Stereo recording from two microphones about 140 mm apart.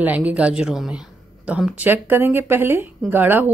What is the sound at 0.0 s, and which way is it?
A woman's voice, 10° right (ahead or behind).